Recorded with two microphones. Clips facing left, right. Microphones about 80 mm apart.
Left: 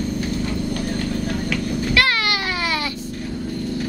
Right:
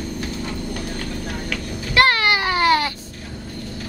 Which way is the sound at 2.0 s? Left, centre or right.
Right.